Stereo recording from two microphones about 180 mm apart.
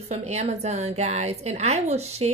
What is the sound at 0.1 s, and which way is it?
Speech, 35° right (ahead or behind).